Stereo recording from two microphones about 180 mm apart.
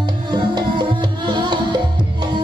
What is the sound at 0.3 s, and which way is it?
Music, 25° right (ahead or behind).